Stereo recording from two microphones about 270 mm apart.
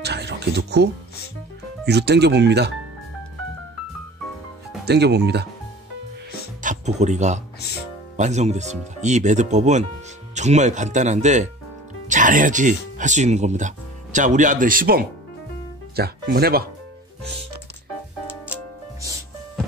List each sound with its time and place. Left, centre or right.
0.0 s speech: right
1.9 s speech: right
4.8 s speech: right
6.6 s speech: right